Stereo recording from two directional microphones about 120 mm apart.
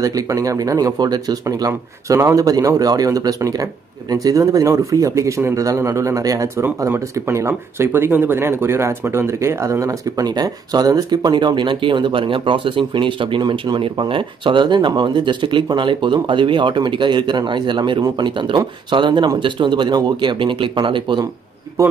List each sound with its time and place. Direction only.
0.0 s speech: 30° right (ahead or behind)
21.8 s speech: 30° right (ahead or behind)